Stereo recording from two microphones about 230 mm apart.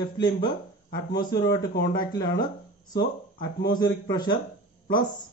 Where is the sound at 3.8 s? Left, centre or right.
Centre.